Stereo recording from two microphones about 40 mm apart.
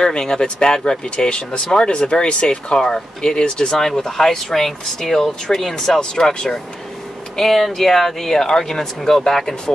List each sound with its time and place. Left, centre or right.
0.0 s speech: centre